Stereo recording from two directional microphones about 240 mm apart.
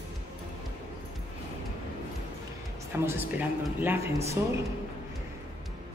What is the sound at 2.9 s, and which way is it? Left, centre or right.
Speech, centre.